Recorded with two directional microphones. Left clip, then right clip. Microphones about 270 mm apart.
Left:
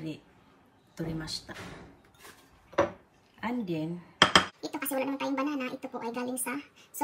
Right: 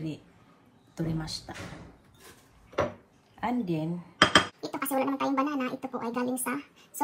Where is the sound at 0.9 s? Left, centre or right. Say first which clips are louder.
Right 1 dB; centre.